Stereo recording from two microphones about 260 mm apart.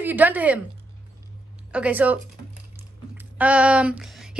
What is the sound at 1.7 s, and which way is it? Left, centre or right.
A woman's voice, centre.